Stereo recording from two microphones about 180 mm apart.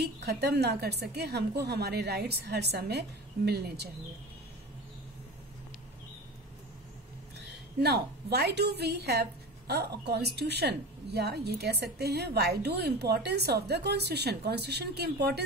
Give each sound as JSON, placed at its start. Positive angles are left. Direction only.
{"t": 0.0, "sound": "a woman's voice", "side_deg": -65}
{"t": 7.3, "sound": "a woman's voice", "side_deg": -65}